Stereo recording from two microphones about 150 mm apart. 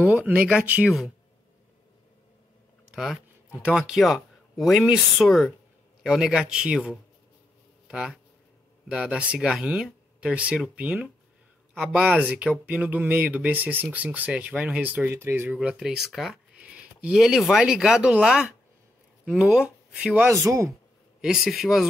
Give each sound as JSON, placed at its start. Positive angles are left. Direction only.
{"t": 0.0, "sound": "speech", "side_deg": -10}
{"t": 3.6, "sound": "speech", "side_deg": -5}
{"t": 20.2, "sound": "speech", "side_deg": -20}
{"t": 21.2, "sound": "speech", "side_deg": -5}